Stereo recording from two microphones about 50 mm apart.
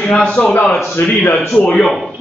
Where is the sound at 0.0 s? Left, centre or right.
Centre.